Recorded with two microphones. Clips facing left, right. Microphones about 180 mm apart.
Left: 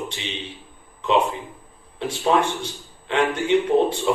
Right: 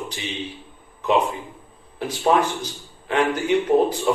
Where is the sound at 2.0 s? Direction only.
25° left (ahead or behind).